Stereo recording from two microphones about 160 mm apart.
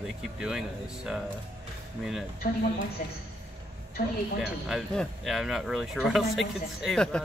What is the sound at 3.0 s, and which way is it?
Speech, 55° left (ahead or behind).